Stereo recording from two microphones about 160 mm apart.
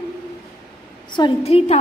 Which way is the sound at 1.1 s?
30° left (ahead or behind).